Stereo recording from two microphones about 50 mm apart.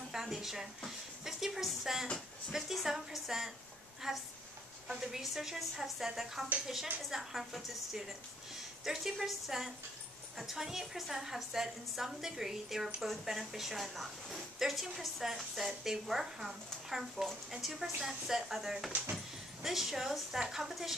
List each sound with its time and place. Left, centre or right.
0.1 s a woman's voice: centre
18.9 s speech: right
19.1 s speech: centre